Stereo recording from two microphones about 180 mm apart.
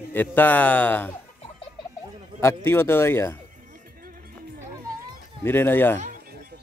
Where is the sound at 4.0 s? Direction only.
50° right (ahead or behind).